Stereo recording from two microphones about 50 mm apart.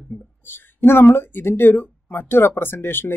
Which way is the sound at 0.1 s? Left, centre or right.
Left.